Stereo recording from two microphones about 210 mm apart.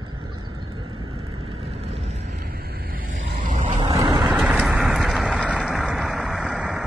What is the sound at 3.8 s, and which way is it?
Vehicle, 15° right (ahead or behind).